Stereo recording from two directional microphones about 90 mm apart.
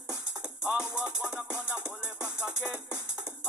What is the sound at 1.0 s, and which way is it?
Music, 10° right (ahead or behind).